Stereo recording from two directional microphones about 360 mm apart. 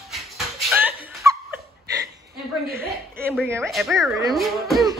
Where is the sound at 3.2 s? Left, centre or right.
Centre.